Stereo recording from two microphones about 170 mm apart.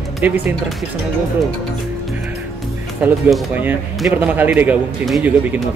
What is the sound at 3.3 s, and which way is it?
Speech, 10° right (ahead or behind).